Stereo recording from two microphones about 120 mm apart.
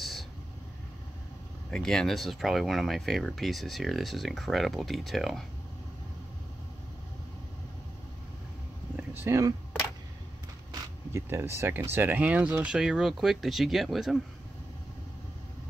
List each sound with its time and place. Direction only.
1.7 s speech: 5° left (ahead or behind)
8.9 s a sound: 15° right (ahead or behind)
10.7 s speech: 25° right (ahead or behind); by 14.1 s centre (ahead or behind)